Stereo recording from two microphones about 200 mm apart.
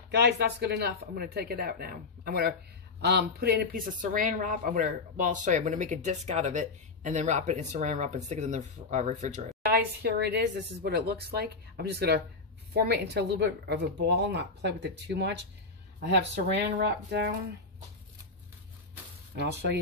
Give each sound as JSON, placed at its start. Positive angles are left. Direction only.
{"t": 0.1, "sound": "speech", "side_deg": -60}
{"t": 9.7, "sound": "speech", "side_deg": -55}
{"t": 16.7, "sound": "speech", "side_deg": -55}
{"t": 19.3, "sound": "speech", "side_deg": -55}